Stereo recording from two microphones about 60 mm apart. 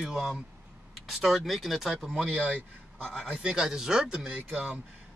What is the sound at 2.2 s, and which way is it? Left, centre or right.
Speech, centre.